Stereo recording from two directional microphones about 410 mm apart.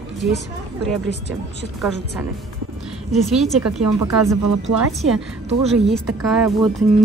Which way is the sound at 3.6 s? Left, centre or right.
Right.